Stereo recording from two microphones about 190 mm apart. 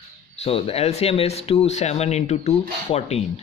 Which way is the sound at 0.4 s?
30° left (ahead or behind).